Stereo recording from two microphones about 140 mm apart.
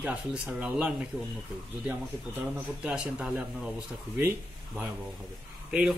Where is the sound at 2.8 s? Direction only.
10° right (ahead or behind).